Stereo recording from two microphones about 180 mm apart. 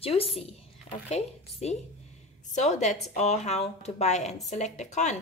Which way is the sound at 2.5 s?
40° left (ahead or behind).